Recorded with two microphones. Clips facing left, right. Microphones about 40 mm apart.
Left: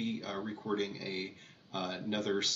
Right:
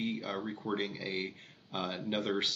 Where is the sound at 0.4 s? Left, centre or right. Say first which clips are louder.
Even; centre.